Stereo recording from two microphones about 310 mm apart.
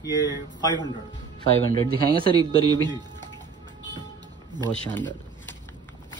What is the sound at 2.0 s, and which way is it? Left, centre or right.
Speech, right.